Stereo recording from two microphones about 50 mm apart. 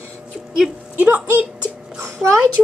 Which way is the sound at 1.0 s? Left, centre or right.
Right.